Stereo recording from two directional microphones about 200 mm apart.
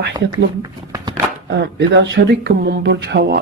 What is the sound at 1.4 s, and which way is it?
Speech, 60° right (ahead or behind).